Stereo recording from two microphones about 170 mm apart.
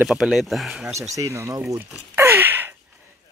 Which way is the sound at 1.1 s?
20° right (ahead or behind).